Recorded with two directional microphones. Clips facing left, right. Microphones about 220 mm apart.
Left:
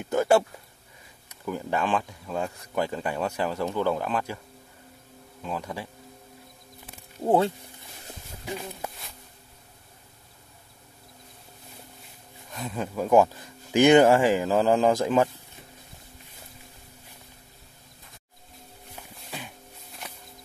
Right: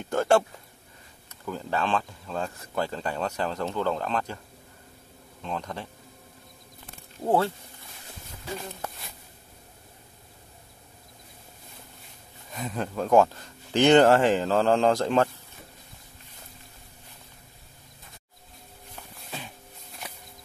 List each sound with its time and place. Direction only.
0.0 s speech: 10° left (ahead or behind)
1.4 s speech: 10° left (ahead or behind)
5.4 s speech: 10° left (ahead or behind)
7.2 s speech: 15° left (ahead or behind)
12.5 s speech: centre (ahead or behind)
18.9 s a sound: 5° left (ahead or behind)